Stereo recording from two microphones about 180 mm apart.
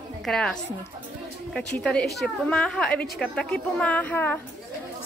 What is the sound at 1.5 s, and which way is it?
A woman's voice, 5° left (ahead or behind).